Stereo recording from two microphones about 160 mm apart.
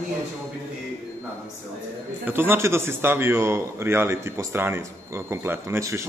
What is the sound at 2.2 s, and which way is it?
A man's voice, 15° right (ahead or behind).